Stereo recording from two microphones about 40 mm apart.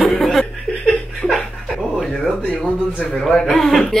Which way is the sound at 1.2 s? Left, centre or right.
Left.